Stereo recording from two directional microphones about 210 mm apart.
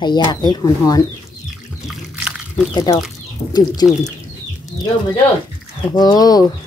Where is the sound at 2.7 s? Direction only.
20° left (ahead or behind).